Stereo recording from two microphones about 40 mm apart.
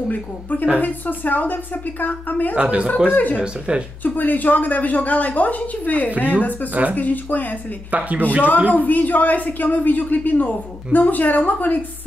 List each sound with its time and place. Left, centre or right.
0.1 s a woman's voice: left
2.5 s speech: right
3.1 s speech: left
3.3 s speech: right
4.0 s speech: left
6.1 s speech: right
7.0 s speech: left
7.9 s speech: right
8.7 s speech: left